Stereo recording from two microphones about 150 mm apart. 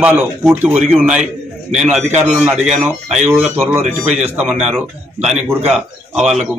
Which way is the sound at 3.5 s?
15° right (ahead or behind).